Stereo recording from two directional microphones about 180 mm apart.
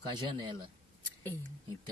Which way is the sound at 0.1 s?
25° right (ahead or behind).